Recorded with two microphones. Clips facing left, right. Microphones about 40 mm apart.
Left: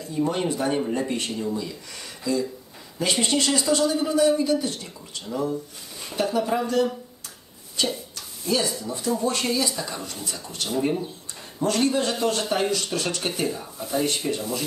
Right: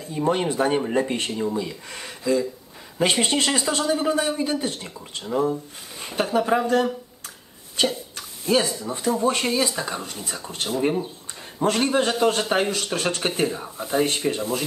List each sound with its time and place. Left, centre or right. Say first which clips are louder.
0.0 s speech: right 2 dB; right
7.8 s speech: right 3 dB; right